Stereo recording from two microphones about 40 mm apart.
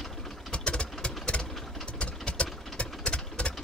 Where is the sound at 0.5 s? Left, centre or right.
Left.